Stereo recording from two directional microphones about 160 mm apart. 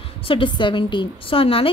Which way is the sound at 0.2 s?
30° left (ahead or behind).